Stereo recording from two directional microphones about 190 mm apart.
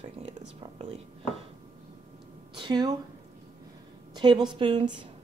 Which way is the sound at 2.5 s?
25° right (ahead or behind).